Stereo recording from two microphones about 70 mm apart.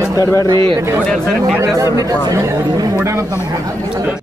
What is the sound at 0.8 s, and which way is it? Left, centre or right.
Speech, right.